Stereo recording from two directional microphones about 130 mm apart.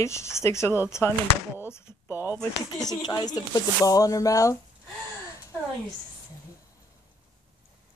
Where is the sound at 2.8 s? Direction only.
30° left (ahead or behind).